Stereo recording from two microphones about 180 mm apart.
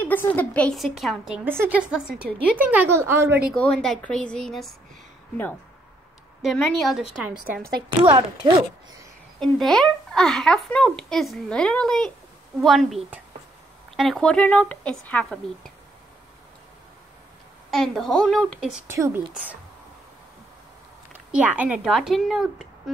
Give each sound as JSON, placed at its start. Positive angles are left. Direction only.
{"t": 0.0, "sound": "a woman's voice", "side_deg": 10}
{"t": 3.5, "sound": "a woman's voice", "side_deg": 5}
{"t": 6.4, "sound": "a woman's voice", "side_deg": 0}
{"t": 8.4, "sound": "speech", "side_deg": -25}
{"t": 9.4, "sound": "a woman's voice", "side_deg": 0}
{"t": 17.6, "sound": "a woman's voice", "side_deg": 0}
{"t": 18.9, "sound": "speech", "side_deg": -15}
{"t": 21.1, "sound": "speech", "side_deg": -10}